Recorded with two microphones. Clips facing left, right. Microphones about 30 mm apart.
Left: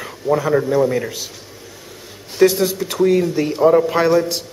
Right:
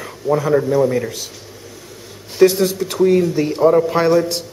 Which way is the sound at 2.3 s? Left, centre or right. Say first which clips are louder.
Right 1 dB; centre.